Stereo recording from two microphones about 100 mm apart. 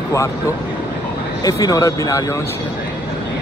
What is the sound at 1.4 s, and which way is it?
Speech, 35° left (ahead or behind).